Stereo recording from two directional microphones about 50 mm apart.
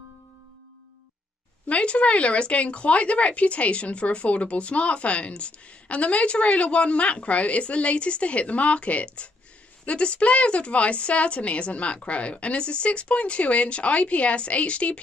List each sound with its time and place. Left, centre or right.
1.7 s speech: left